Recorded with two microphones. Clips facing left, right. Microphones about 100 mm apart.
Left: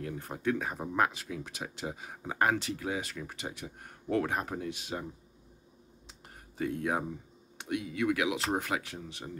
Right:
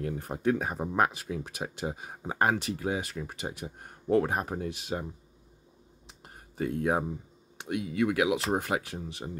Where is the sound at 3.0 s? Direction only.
45° right (ahead or behind).